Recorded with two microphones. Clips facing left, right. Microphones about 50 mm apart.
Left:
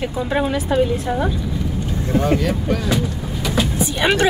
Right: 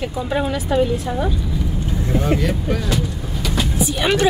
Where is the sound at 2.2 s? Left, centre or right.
Centre.